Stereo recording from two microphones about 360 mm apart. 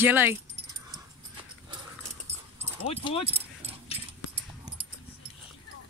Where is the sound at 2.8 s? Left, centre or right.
Centre.